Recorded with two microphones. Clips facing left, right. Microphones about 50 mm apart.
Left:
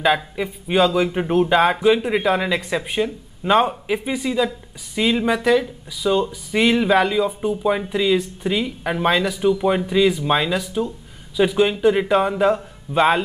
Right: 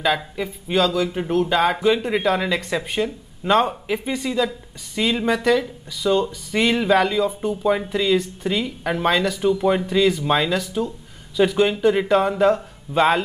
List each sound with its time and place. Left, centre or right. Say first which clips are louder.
0.0 s speech: left 3 dB; centre